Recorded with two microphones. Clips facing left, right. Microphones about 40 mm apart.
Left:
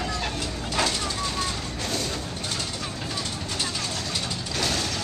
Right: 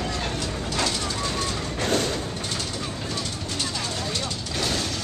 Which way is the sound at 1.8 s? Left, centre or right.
Right.